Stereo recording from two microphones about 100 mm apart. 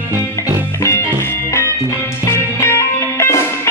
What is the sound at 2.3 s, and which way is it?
Music, 25° left (ahead or behind).